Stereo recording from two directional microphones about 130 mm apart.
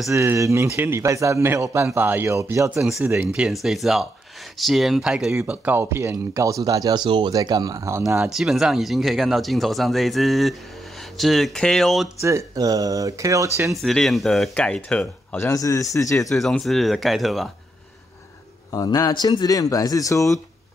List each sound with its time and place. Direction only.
0.1 s speech: 20° right (ahead or behind)
2.8 s speech: 5° right (ahead or behind)
5.3 s speech: 15° right (ahead or behind)
7.1 s speech: 40° right (ahead or behind); by 8.0 s 25° right (ahead or behind)
8.3 s speech: 5° right (ahead or behind)
12.2 s speech: 20° right (ahead or behind)
13.7 s speech: centre (ahead or behind)
15.3 s speech: 25° left (ahead or behind)
16.3 s speech: centre (ahead or behind)
18.7 s speech: 30° left (ahead or behind)